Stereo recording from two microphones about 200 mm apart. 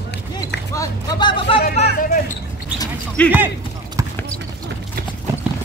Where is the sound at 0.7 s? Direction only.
15° left (ahead or behind).